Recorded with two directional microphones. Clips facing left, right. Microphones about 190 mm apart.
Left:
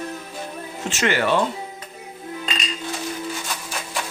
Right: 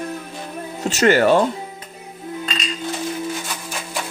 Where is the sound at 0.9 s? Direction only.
40° right (ahead or behind).